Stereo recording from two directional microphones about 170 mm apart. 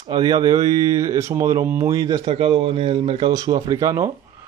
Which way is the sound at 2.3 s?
35° right (ahead or behind).